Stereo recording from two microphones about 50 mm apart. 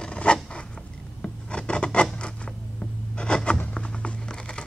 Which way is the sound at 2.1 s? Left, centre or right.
Centre.